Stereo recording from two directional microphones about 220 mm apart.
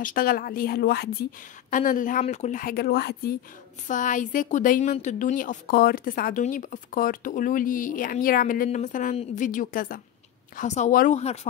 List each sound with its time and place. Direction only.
0.0 s a woman's voice: 40° left (ahead or behind)
3.8 s a woman's voice: 35° left (ahead or behind)